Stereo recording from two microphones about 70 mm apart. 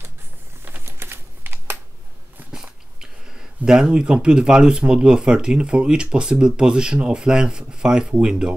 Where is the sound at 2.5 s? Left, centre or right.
Centre.